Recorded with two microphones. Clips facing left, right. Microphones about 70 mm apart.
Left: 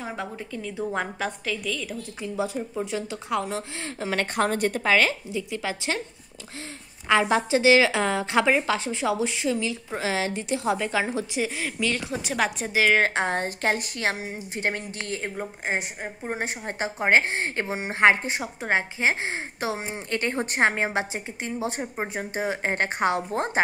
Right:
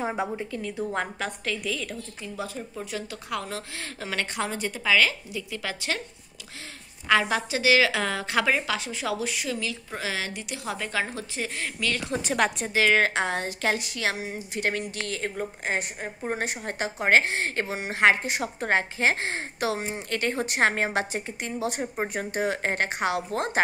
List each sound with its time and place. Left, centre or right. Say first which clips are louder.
0.0 s a woman's voice: right 4 dB; centre
0.5 s a woman's voice: right 1 dB; centre
0.7 s a woman's voice: left 2 dB; centre
1.6 s a woman's voice: even; centre
2.3 s a woman's voice: left 6 dB; left
4.4 s speech: left 6 dB; left
7.1 s a woman's voice: left 3 dB; left
10.8 s a woman's voice: left 4 dB; centre
12.7 s speech: left 1 dB; centre
13.0 s a woman's voice: left 1 dB; left
18.4 s a woman's voice: even; centre